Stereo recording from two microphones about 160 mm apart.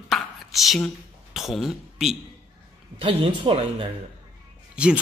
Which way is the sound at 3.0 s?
35° right (ahead or behind).